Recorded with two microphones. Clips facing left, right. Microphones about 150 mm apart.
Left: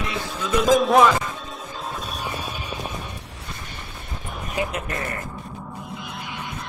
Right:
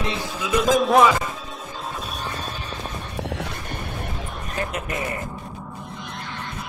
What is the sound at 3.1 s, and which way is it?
Music, 85° right.